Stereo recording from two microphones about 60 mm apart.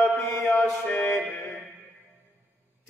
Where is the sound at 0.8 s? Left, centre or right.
Left.